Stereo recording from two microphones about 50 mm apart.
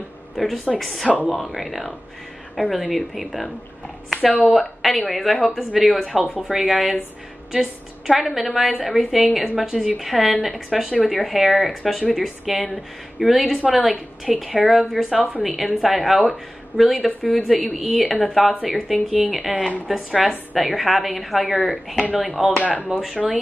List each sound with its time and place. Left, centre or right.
0.7 s a woman's voice: centre
1.0 s speech: right
1.3 s a woman's voice: centre
8.1 s a woman's voice: centre